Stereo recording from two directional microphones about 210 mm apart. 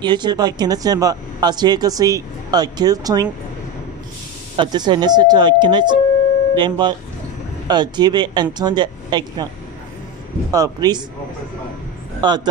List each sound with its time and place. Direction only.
0.0 s speech: 20° right (ahead or behind)
4.6 s speech: 20° right (ahead or behind)
10.5 s a man's voice: 15° right (ahead or behind)
12.2 s speech: 20° right (ahead or behind)